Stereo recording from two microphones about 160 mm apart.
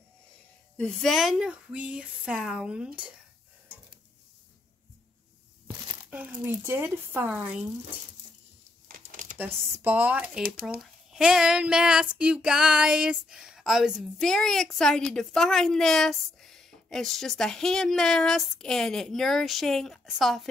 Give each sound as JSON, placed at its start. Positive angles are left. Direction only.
{"t": 0.7, "sound": "speech", "side_deg": 5}
{"t": 6.0, "sound": "a sound", "side_deg": -10}
{"t": 6.4, "sound": "speech", "side_deg": -15}
{"t": 8.8, "sound": "crumpling", "side_deg": -60}
{"t": 9.4, "sound": "speech", "side_deg": -10}
{"t": 10.4, "sound": "speech", "side_deg": -65}
{"t": 10.8, "sound": "speech", "side_deg": -5}